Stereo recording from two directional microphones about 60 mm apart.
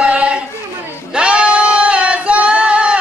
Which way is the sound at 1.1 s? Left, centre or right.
Centre.